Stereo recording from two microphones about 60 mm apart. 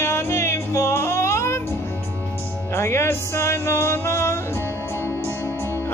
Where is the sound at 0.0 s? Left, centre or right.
Left.